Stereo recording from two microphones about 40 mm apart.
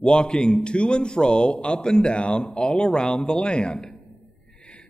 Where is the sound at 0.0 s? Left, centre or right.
Left.